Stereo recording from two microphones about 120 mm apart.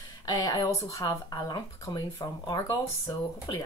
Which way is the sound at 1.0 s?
35° left (ahead or behind).